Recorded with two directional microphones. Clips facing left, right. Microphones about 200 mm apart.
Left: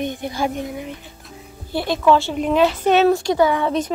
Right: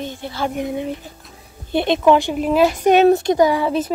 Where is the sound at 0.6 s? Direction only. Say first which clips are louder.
Right 5 dB; 25° right (ahead or behind).